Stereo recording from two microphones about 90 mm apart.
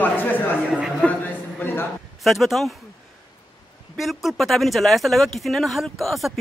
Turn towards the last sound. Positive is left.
turn(degrees=0)  # may be behind; listen again after turning